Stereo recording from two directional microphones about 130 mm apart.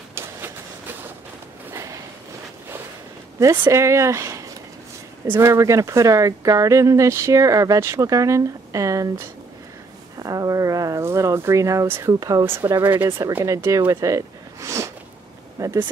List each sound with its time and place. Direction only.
1.7 s a sound: 25° right (ahead or behind)
3.3 s speech: 20° right (ahead or behind)
12.9 s speech: 15° right (ahead or behind)